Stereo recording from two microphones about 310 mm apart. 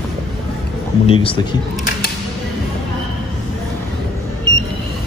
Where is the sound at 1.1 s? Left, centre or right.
Centre.